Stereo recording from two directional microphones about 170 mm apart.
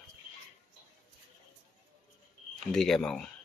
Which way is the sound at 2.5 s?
Centre (ahead or behind).